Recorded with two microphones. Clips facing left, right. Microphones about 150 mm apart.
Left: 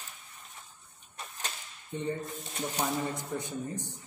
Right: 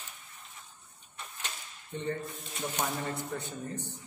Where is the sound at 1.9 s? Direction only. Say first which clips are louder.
Left 2 dB; 15° left (ahead or behind).